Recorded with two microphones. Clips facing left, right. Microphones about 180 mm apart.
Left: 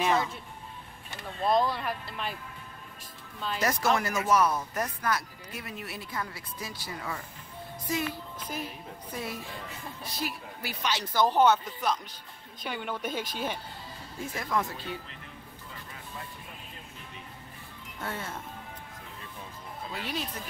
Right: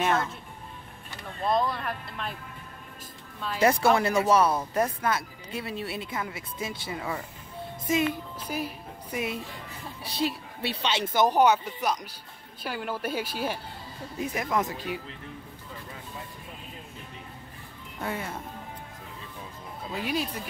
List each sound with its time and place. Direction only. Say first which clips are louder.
0.0 s speech: right 1 dB; centre (ahead or behind)
1.4 s speech: even; centre (ahead or behind)
3.3 s speech: right 1 dB; centre (ahead or behind)
3.6 s a child's voice: right 6 dB; 30° right (ahead or behind)
8.5 s speech: right 5 dB; 10° right (ahead or behind)
10.2 s speech: right 7 dB; 30° right (ahead or behind); by 13.6 s 5° right (ahead or behind)
14.1 s speech: right 3 dB; 20° right (ahead or behind)
18.0 s speech: right 4 dB; 10° right (ahead or behind)
19.9 s speech: right 6 dB; 10° right (ahead or behind)